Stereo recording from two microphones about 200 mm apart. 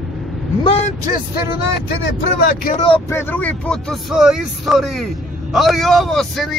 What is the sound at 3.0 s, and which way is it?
Speech, 10° left (ahead or behind).